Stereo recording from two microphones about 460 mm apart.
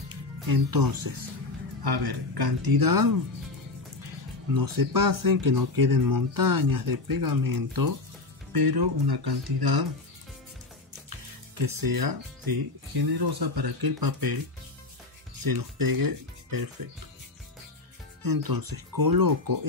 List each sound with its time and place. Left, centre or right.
0.1 s speech: right
4.6 s speech: right
11.1 s speech: right
15.4 s speech: right
18.2 s speech: right